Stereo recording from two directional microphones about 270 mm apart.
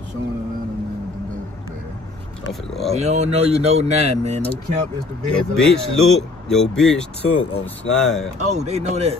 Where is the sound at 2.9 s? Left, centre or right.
Right.